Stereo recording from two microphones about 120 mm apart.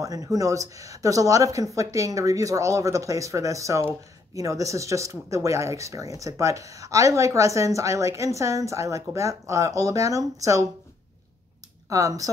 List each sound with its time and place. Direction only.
0.0 s speech: 30° right (ahead or behind)
11.9 s speech: 30° right (ahead or behind)